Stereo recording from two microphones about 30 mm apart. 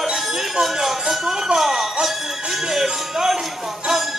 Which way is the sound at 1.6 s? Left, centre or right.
Centre.